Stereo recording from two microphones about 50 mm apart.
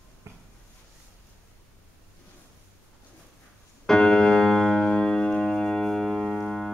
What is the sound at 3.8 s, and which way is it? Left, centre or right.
Piano, centre.